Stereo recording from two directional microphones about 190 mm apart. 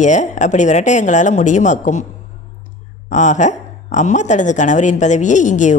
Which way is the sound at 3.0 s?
40° left (ahead or behind).